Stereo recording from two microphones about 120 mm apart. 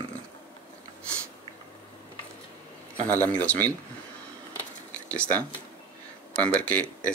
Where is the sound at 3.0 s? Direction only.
15° left (ahead or behind).